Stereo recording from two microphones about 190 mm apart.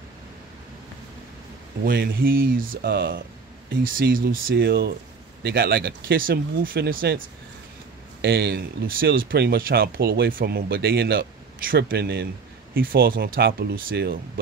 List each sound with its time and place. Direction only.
1.9 s speech: 50° right (ahead or behind)